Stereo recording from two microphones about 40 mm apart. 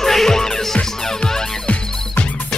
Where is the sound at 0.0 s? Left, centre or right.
Centre.